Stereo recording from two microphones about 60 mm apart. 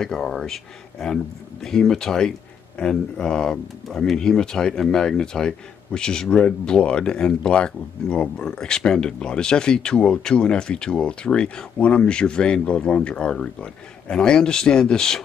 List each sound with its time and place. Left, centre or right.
0.0 s speech: centre